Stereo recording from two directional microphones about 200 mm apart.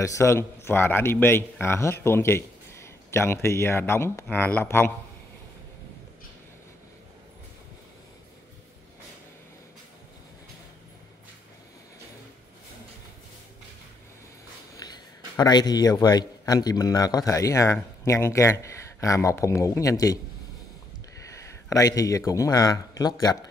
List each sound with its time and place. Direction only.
0.0 s a man's voice: 15° left (ahead or behind)
15.3 s a man's voice: 20° left (ahead or behind)
21.3 s speech: 15° left (ahead or behind)